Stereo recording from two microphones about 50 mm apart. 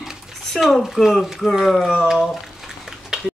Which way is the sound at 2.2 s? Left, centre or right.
Centre.